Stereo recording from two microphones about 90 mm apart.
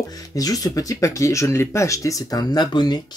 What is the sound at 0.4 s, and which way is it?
Speech, 40° left (ahead or behind).